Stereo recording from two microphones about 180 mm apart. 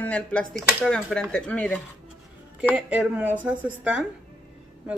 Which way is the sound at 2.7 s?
5° right (ahead or behind).